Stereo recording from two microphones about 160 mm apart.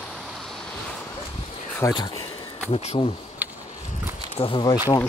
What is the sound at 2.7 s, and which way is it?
Speech, 40° left (ahead or behind).